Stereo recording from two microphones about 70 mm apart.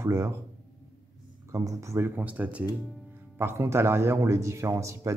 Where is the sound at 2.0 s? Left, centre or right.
Right.